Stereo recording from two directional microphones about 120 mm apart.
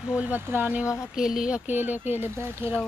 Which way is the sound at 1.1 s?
5° right (ahead or behind).